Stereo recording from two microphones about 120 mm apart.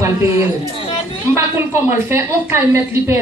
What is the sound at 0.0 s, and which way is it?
A woman's voice, 20° right (ahead or behind).